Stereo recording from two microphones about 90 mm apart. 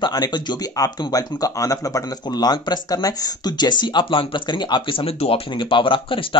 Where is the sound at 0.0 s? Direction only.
55° left (ahead or behind).